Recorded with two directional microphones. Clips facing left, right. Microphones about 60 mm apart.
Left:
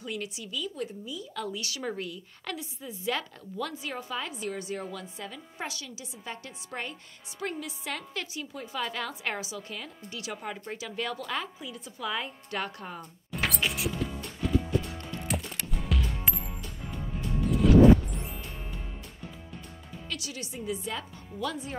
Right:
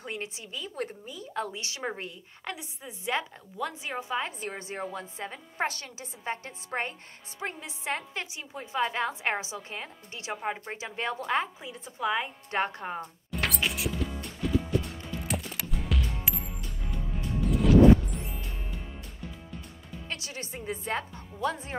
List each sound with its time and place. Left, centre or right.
0.0 s a woman's voice: right
4.3 s a woman's voice: right
13.4 s music: centre
17.5 s a sound: centre
20.1 s a woman's voice: right